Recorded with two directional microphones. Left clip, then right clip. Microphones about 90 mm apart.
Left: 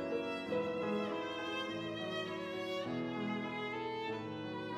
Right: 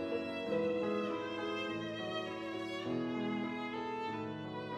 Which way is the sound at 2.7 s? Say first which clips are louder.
Right 2 dB; 30° left (ahead or behind).